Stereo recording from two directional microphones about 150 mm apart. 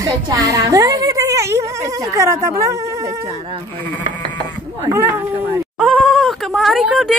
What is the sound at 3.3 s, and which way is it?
Speech, 40° right (ahead or behind).